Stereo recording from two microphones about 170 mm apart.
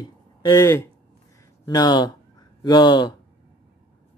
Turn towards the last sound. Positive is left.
turn(degrees=25)  # may be behind; listen again after turning